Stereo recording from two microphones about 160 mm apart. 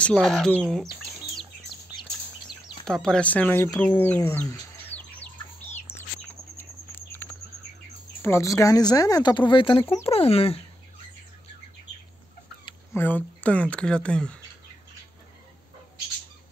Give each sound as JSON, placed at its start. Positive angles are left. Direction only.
{"t": 0.0, "sound": "speech", "side_deg": 5}
{"t": 2.8, "sound": "speech", "side_deg": 5}
{"t": 4.9, "sound": "bird", "side_deg": 10}
{"t": 6.6, "sound": "patter", "side_deg": 15}
{"t": 8.2, "sound": "speech", "side_deg": 15}
{"t": 12.9, "sound": "speech", "side_deg": 10}